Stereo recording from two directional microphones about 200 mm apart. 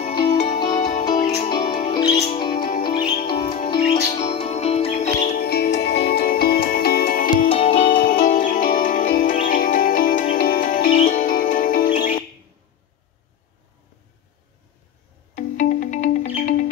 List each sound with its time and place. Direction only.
0.1 s music: 20° left (ahead or behind)
0.7 s music: 35° left (ahead or behind)
1.0 s music: 20° left (ahead or behind); by 7.4 s 45° left (ahead or behind)
7.4 s music: 30° left (ahead or behind)
8.1 s music: 40° left (ahead or behind)
15.3 s music: 40° left (ahead or behind)